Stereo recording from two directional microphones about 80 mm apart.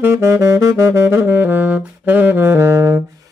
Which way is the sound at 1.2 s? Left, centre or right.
Right.